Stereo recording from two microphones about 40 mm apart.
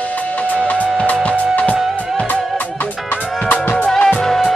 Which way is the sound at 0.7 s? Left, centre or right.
Right.